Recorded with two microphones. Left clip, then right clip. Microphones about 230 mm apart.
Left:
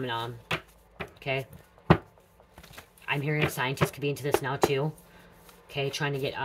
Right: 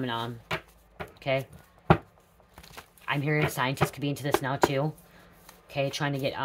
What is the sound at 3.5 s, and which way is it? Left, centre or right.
Speech, right.